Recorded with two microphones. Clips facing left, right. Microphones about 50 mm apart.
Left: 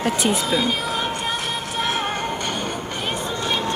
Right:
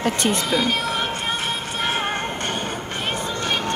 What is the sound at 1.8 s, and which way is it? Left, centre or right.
Music, right.